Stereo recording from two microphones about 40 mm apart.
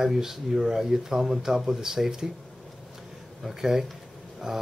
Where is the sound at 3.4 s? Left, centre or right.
Centre.